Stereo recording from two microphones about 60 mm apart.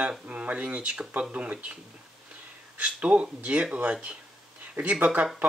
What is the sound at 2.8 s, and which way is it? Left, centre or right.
Speech, right.